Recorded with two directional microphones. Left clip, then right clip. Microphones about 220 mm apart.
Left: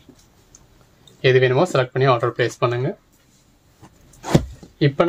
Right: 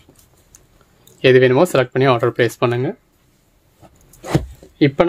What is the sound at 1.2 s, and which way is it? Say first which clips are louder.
Speech: right 4 dB; 50° right (ahead or behind).